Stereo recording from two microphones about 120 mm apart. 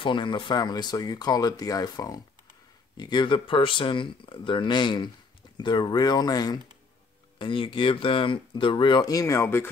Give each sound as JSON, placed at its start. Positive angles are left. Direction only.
{"t": 0.0, "sound": "speech", "side_deg": 40}
{"t": 7.3, "sound": "speech", "side_deg": 45}